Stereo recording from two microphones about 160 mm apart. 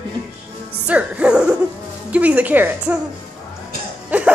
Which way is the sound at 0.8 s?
10° right (ahead or behind).